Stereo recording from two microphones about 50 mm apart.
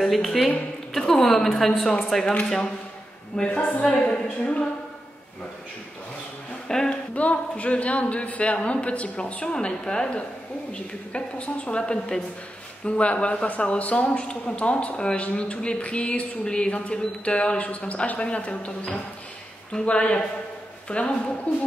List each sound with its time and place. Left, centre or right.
0.0 s a woman's voice: centre
2.3 s speech: left
6.9 s speech: left